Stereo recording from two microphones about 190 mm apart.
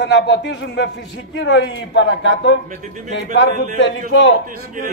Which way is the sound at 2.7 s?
40° right (ahead or behind).